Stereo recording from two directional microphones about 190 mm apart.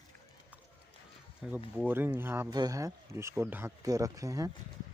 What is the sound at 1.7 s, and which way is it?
Speech, 10° right (ahead or behind).